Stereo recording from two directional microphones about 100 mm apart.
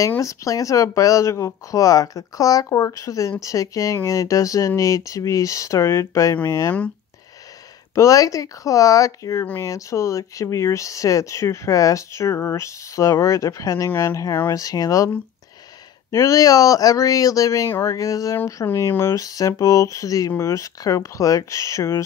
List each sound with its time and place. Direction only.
0.2 s speech: 35° left (ahead or behind)
7.9 s speech: 35° left (ahead or behind)
16.1 s speech: 35° left (ahead or behind)